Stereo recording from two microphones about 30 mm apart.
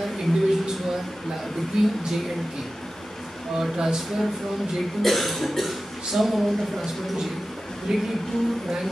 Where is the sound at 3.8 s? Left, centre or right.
Centre.